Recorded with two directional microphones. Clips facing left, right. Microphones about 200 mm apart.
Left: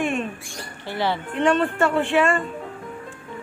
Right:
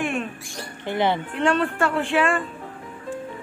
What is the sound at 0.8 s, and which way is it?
Speech, 20° right (ahead or behind).